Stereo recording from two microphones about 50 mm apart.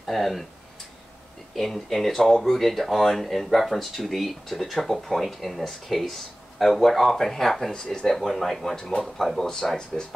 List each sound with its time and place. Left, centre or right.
0.0 s speech: centre
1.5 s speech: centre
7.7 s speech: centre